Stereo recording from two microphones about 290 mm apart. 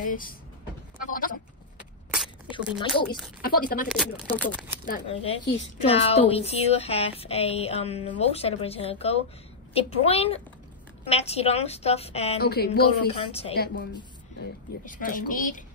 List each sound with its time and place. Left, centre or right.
0.0 s speech: left
1.0 s bleat: left
2.8 s speech: centre
3.4 s a woman's voice: left
4.4 s speech: centre
4.8 s a woman's voice: left
12.4 s speech: left
13.1 s a woman's voice: left
14.9 s a woman's voice: left